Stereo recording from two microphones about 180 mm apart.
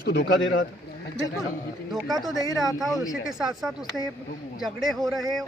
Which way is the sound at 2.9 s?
20° left (ahead or behind).